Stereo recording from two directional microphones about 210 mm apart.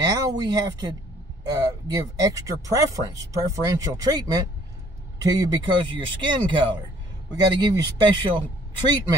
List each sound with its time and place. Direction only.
0.0 s speech: 20° right (ahead or behind)